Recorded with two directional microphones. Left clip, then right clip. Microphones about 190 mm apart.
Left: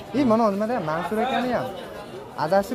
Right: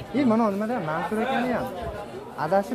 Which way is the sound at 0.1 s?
20° left (ahead or behind).